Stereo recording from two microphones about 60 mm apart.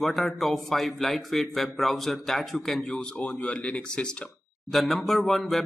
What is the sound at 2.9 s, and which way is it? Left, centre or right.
Speech, left.